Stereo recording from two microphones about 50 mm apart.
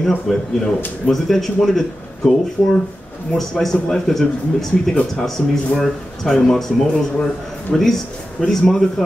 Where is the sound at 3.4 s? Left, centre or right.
Centre.